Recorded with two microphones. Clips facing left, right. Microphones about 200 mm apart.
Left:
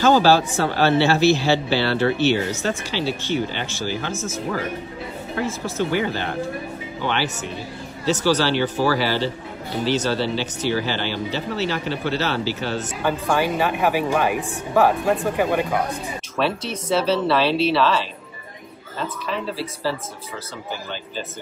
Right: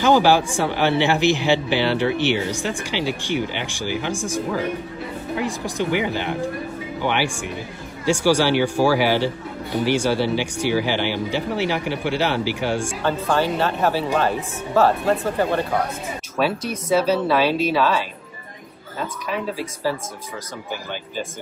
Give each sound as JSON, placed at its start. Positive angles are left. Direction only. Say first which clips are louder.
{"t": 0.0, "sound": "speech", "louder": "even", "side_deg": -15}
{"t": 5.4, "sound": "speech", "louder": "left 1 dB", "side_deg": -15}
{"t": 13.0, "sound": "speech", "louder": "left 1 dB", "side_deg": 10}
{"t": 16.3, "sound": "speech", "louder": "right 1 dB", "side_deg": -10}